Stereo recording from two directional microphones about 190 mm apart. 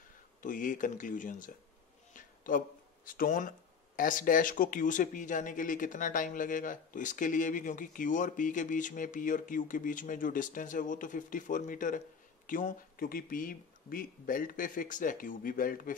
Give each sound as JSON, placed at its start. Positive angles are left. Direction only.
{"t": 0.4, "sound": "speech", "side_deg": 45}
{"t": 2.1, "sound": "a sound", "side_deg": 45}
{"t": 3.1, "sound": "speech", "side_deg": 45}